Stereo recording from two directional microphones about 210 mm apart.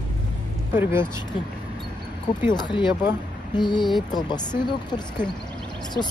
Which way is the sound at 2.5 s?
20° left (ahead or behind).